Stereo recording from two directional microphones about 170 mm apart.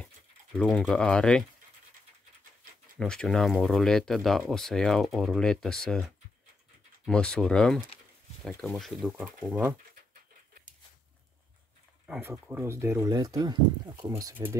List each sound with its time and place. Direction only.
0.6 s speech: 5° left (ahead or behind)
3.0 s speech: 5° left (ahead or behind)
9.1 s speech: 10° right (ahead or behind)
12.1 s speech: 10° right (ahead or behind)